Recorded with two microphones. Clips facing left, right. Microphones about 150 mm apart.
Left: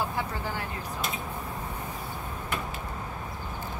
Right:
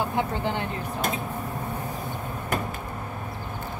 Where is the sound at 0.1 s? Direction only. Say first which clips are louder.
Right 6 dB; 25° right (ahead or behind).